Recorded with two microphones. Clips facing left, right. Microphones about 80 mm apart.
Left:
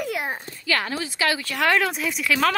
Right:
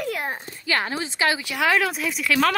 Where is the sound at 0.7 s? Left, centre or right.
Right.